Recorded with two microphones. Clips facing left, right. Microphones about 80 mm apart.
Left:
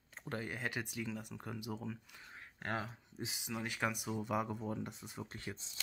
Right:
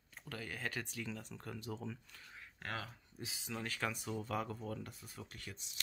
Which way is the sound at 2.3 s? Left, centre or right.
Left.